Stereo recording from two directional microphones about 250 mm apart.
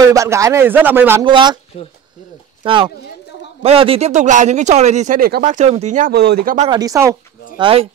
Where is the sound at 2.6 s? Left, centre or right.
Centre.